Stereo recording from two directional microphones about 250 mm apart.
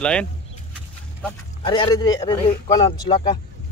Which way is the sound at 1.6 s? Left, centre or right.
Centre.